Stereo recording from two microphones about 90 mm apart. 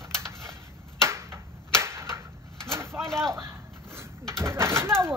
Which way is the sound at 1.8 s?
30° right (ahead or behind).